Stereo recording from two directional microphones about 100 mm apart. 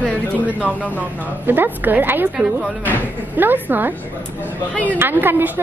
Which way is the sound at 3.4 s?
20° right (ahead or behind).